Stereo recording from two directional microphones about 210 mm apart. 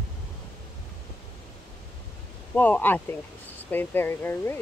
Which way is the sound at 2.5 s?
5° left (ahead or behind).